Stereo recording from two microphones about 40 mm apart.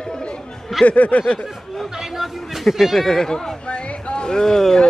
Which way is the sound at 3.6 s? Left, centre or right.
Left.